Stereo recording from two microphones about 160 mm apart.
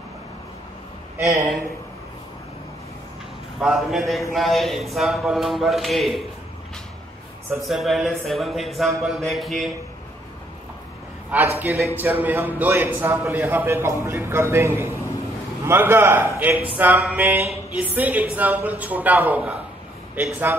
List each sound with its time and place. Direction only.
1.1 s speech: 20° right (ahead or behind)
3.6 s speech: centre (ahead or behind)
7.6 s speech: centre (ahead or behind)
11.3 s a man's voice: 10° right (ahead or behind)